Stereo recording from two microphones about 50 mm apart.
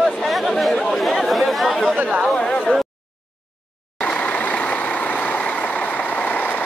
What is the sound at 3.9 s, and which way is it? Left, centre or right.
Vehicle, left.